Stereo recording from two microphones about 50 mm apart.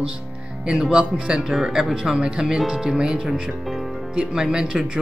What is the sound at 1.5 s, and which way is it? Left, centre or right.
Speech, centre.